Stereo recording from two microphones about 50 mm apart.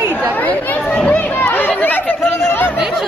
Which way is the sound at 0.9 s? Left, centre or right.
Left.